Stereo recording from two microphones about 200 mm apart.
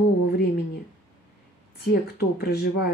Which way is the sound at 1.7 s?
55° left (ahead or behind).